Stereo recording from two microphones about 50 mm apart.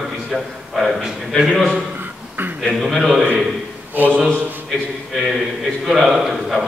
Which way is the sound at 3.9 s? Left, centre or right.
Right.